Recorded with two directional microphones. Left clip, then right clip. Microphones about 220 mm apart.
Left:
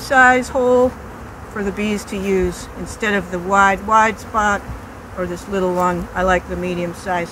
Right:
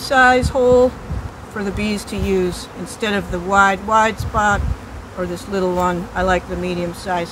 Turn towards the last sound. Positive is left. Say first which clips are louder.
# even
turn(degrees=-5)  # may be behind; listen again after turning